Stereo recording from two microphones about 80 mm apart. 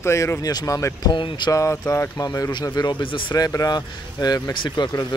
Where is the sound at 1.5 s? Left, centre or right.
Left.